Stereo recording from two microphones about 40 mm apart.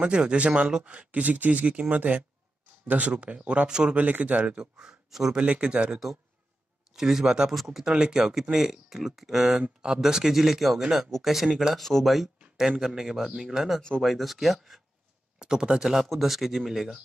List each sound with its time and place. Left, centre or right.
0.1 s speech: right
3.9 s speech: right
4.6 s a man's voice: centre
5.3 s speech: right
6.9 s speech: centre
7.5 s speech: centre
7.9 s speech: centre
9.6 s speech: right
9.9 s speech: centre
11.7 s speech: centre
14.0 s speech: centre
15.3 s speech: centre